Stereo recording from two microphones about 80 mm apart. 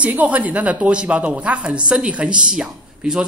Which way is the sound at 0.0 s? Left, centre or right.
Centre.